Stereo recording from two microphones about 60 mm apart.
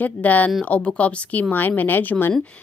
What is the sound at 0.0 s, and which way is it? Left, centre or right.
Speech, left.